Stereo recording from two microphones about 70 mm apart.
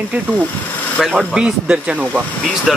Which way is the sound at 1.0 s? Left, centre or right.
Centre.